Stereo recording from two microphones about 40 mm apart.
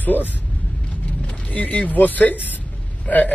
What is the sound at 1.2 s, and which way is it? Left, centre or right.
A man's voice, left.